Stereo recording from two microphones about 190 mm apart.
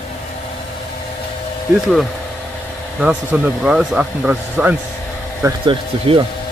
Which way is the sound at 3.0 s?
10° right (ahead or behind).